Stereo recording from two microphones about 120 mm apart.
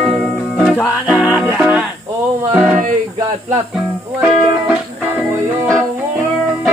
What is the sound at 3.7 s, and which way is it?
Speech, 10° right (ahead or behind).